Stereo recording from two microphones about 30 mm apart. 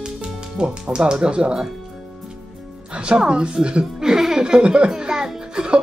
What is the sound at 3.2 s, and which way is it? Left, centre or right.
Speech, right.